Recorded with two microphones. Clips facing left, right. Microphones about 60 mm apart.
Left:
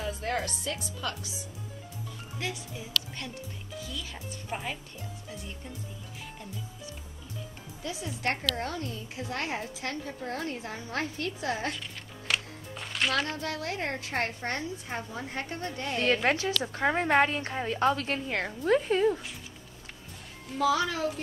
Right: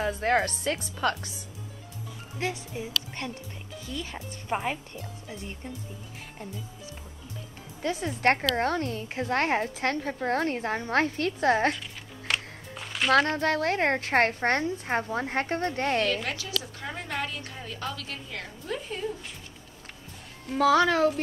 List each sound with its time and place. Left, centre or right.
0.0 s a woman's voice: right
2.3 s speech: right
7.8 s a woman's voice: right
12.3 s music: centre
13.1 s a woman's voice: right
16.1 s a woman's voice: left
20.5 s a woman's voice: right